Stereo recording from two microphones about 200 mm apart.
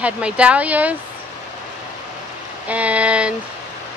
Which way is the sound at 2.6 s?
5° right (ahead or behind).